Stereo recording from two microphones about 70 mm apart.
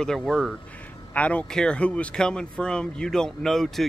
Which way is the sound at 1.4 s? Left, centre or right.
Centre.